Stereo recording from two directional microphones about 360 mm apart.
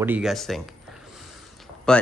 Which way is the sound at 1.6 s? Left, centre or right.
Centre.